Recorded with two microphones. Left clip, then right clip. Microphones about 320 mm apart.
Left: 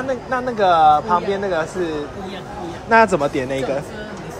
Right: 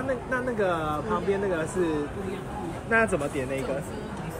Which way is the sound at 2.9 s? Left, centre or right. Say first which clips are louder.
Left 10 dB; centre.